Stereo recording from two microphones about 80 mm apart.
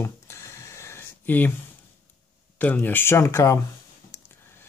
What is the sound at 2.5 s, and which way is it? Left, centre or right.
Speech, left.